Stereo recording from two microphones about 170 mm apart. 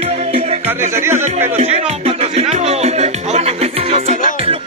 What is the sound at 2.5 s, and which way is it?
Music, 40° right (ahead or behind).